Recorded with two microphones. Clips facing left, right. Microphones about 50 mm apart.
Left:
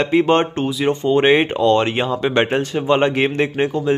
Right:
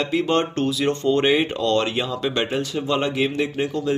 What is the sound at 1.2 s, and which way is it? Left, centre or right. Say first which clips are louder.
Speech: left 7 dB; left.